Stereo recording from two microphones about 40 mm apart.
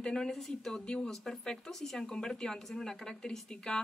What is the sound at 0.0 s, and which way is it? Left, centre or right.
A woman's voice, centre.